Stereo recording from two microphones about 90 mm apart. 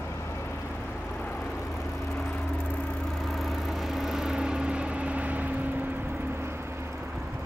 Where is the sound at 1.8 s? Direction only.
30° left (ahead or behind).